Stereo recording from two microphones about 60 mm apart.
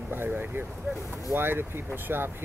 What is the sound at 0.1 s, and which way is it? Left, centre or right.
Vehicle, right.